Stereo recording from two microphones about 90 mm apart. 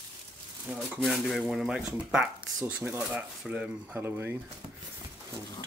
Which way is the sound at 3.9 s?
25° right (ahead or behind).